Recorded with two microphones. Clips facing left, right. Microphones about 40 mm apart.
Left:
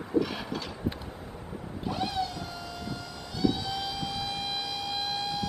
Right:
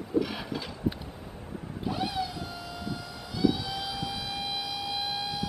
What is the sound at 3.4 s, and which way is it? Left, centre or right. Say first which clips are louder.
Siren: right 1 dB; centre.